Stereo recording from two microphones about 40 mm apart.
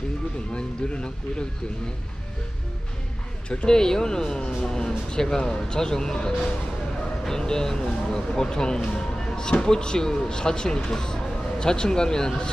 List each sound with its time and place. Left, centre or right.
0.6 s speech: left
3.4 s speech: centre